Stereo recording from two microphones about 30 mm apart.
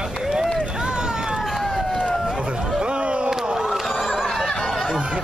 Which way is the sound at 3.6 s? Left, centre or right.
Centre.